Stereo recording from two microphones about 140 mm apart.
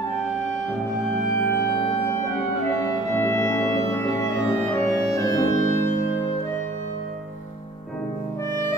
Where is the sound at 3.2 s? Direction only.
15° left (ahead or behind).